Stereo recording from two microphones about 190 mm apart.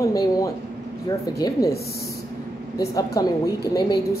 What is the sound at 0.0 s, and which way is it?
Speech, 15° left (ahead or behind).